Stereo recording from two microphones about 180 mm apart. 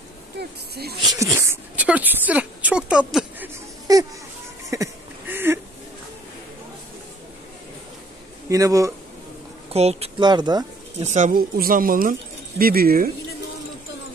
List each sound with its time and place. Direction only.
0.4 s speech: 60° right (ahead or behind)
1.0 s speech: 15° right (ahead or behind)
3.9 s speech: 20° right (ahead or behind)
4.7 s a sound: 15° right (ahead or behind)
8.5 s speech: 20° right (ahead or behind)
9.7 s speech: 35° right (ahead or behind)
11.0 s speech: 40° right (ahead or behind)